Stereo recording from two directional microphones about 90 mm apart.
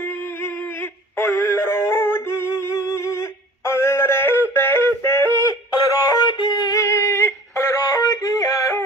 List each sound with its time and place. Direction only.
1.1 s synthetic singing: 30° left (ahead or behind)
5.9 s music: 40° left (ahead or behind)
6.2 s music: 55° left (ahead or behind); by 8.8 s 35° left (ahead or behind)